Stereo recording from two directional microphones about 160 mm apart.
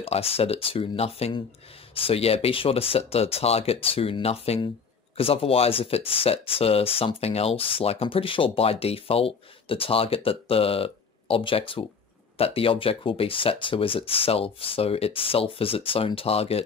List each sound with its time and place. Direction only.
0.0 s speech: 35° left (ahead or behind)